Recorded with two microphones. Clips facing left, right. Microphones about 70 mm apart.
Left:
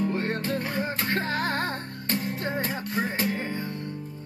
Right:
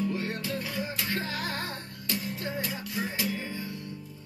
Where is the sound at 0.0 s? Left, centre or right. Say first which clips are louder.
Left 4 dB; left.